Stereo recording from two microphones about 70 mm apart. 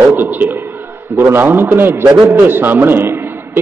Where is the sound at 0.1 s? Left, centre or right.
Right.